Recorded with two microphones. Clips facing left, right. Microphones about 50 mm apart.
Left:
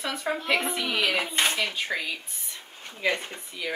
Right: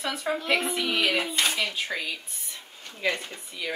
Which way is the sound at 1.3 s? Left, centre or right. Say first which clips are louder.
Left 1 dB; left.